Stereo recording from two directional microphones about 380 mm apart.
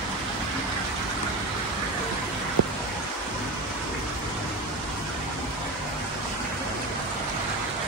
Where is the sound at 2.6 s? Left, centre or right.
Right.